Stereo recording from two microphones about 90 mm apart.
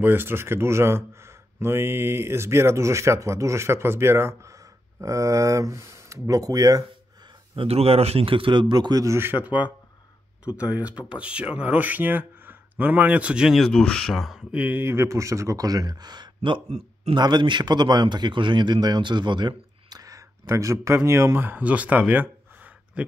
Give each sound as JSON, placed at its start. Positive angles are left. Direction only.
{"t": 0.0, "sound": "speech", "side_deg": -25}
{"t": 7.5, "sound": "a man's voice", "side_deg": -90}
{"t": 9.0, "sound": "speech", "side_deg": -30}
{"t": 13.6, "sound": "speech", "side_deg": 10}
{"t": 14.5, "sound": "a man's voice", "side_deg": -20}